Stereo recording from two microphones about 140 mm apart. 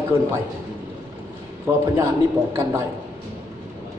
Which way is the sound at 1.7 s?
15° right (ahead or behind).